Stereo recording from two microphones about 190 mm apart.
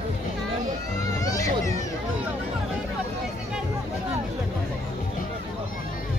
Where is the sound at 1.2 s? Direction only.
15° left (ahead or behind).